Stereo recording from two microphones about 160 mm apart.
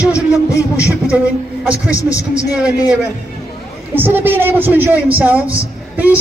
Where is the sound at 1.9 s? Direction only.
20° left (ahead or behind).